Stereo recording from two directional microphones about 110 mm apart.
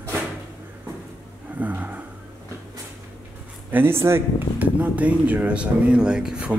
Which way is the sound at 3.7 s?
20° right (ahead or behind).